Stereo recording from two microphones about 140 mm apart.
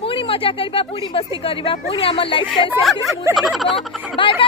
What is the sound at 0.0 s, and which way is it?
Speech, 40° left (ahead or behind).